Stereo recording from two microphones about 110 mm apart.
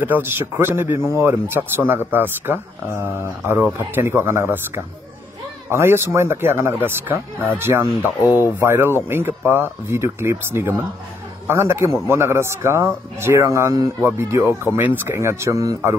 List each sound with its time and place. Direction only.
0.0 s speech: 20° right (ahead or behind)